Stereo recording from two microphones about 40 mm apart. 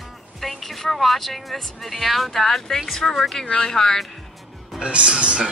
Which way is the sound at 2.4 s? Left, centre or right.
Centre.